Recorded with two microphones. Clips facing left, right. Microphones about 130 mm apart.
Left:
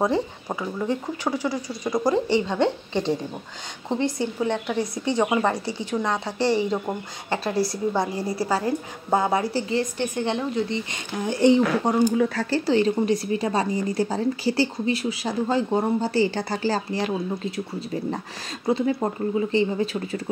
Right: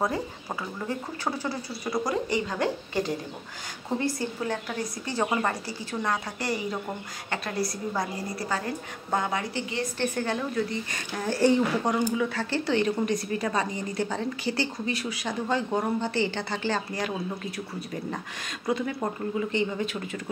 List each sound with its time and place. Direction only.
0.0 s speech: 20° left (ahead or behind)
2.0 s a woman's voice: 30° left (ahead or behind)
9.9 s a woman's voice: 15° left (ahead or behind)
12.1 s a woman's voice: 40° left (ahead or behind)
18.7 s a woman's voice: 30° left (ahead or behind)